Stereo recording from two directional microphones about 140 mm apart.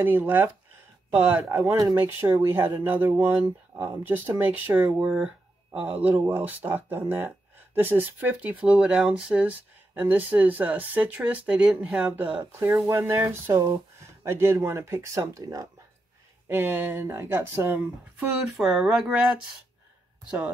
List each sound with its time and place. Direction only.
0.0 s speech: 15° right (ahead or behind)